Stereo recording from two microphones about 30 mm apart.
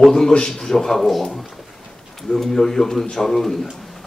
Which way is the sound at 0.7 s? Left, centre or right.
Centre.